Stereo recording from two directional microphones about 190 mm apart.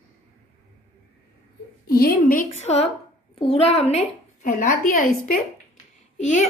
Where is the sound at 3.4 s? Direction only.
35° left (ahead or behind).